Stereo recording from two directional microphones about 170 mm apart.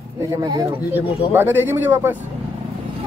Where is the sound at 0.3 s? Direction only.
20° right (ahead or behind).